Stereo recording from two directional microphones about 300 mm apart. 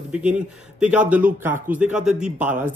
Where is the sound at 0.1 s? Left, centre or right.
Centre.